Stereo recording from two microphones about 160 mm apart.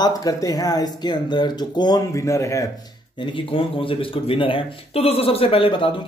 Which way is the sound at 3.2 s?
35° left (ahead or behind).